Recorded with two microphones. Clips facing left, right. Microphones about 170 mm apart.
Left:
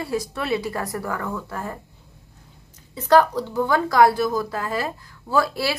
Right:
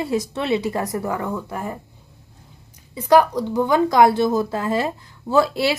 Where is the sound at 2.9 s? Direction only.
10° right (ahead or behind).